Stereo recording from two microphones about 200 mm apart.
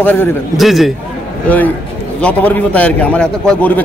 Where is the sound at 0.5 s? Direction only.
Centre (ahead or behind).